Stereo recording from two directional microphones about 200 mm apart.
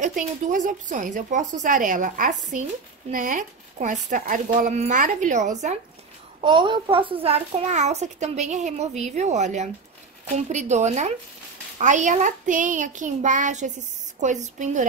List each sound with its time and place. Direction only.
0.0 s a child's voice: 40° right (ahead or behind)
6.4 s a child's voice: 25° right (ahead or behind)